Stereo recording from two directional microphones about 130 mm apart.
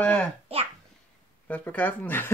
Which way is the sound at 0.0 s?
10° left (ahead or behind).